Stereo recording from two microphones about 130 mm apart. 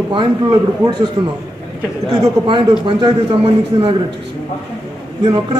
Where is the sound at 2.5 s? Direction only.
40° right (ahead or behind).